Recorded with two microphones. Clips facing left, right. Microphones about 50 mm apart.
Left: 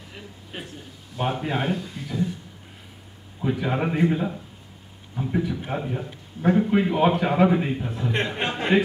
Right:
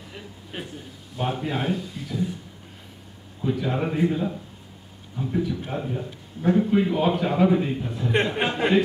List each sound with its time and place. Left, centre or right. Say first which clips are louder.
0.1 s a man's voice: right 1 dB; centre
1.1 s speech: left 1 dB; centre
3.4 s a man's voice: left 1 dB; centre
8.1 s speech: right 4 dB; centre